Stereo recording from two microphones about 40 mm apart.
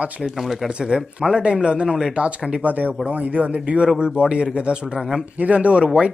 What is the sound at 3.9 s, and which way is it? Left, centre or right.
Speech, right.